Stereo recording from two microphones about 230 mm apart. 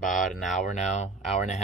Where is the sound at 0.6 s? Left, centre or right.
Left.